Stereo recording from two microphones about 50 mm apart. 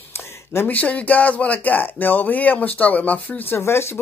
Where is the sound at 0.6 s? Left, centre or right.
Left.